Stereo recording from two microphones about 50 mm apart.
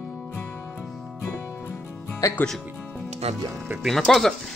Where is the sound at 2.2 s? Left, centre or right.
Left.